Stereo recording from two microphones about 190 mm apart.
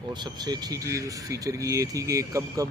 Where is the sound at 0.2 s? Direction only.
20° right (ahead or behind).